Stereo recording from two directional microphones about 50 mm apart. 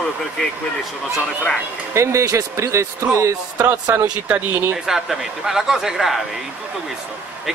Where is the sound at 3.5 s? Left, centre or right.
Right.